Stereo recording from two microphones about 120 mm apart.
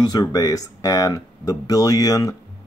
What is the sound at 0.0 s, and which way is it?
Speech, 35° left (ahead or behind).